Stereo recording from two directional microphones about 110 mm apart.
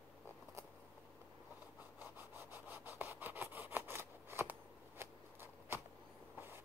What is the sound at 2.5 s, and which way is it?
Rub, 15° right (ahead or behind).